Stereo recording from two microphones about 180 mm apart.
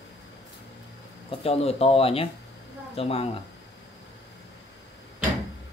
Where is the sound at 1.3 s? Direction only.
35° left (ahead or behind).